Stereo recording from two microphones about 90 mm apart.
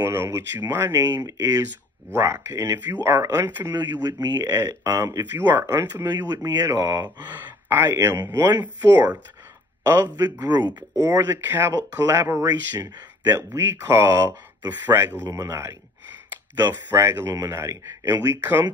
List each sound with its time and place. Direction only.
0.0 s speech: 30° right (ahead or behind)
1.0 s speech: 45° right (ahead or behind)
2.0 s speech: 30° right (ahead or behind)
4.0 s speech: 50° right (ahead or behind)
4.6 s speech: 35° right (ahead or behind)
6.0 s speech: 50° right (ahead or behind)
7.2 s speech: 20° right (ahead or behind)
10.4 s speech: 50° right (ahead or behind)
11.0 s speech: 30° right (ahead or behind)
12.4 s speech: 45° right (ahead or behind); by 15.1 s 20° right (ahead or behind)
15.2 s speech: 35° right (ahead or behind)
16.5 s speech: 50° right (ahead or behind)
16.9 s speech: 30° right (ahead or behind)